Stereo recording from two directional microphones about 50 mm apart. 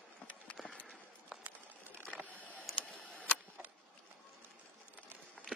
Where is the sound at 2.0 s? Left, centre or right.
Left.